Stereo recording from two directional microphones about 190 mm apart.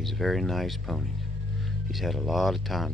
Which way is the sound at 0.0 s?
Centre (ahead or behind).